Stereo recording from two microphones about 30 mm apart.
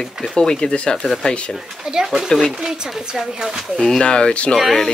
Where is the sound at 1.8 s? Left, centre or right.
Centre.